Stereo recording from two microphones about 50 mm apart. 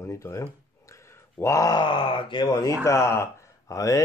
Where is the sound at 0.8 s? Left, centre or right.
Left.